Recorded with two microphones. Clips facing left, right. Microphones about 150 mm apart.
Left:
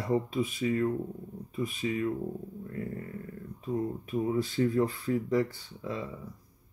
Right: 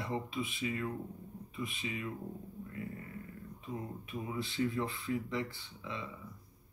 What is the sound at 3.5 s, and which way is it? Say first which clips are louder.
Speech: left 11 dB; 40° left (ahead or behind).